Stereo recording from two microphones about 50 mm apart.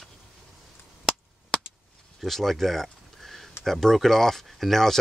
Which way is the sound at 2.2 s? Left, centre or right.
Centre.